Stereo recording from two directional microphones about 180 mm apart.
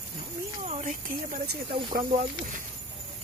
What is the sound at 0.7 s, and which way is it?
Speech, 40° right (ahead or behind).